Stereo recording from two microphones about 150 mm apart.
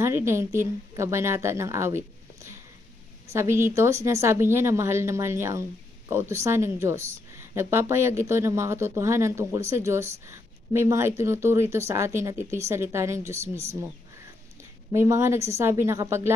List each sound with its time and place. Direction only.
0.0 s a woman's voice: 15° right (ahead or behind)